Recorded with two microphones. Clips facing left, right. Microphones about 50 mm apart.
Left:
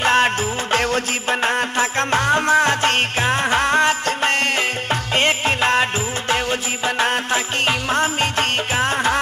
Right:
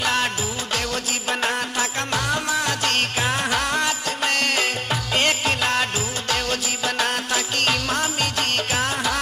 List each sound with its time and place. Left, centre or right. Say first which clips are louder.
0.0 s music: left 6 dB; left
1.3 s music: left 4 dB; left
2.0 s music: left 8 dB; left
5.1 s music of bollywood: left 3 dB; left
7.0 s music: left 5 dB; left